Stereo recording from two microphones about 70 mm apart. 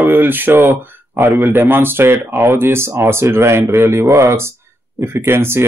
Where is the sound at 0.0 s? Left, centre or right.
Right.